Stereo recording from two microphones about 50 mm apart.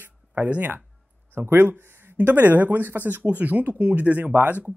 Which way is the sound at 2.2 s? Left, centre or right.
Right.